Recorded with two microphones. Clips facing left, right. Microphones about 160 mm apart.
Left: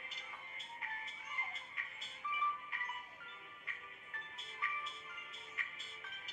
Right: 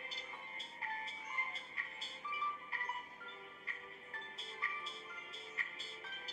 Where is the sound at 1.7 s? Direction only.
35° right (ahead or behind).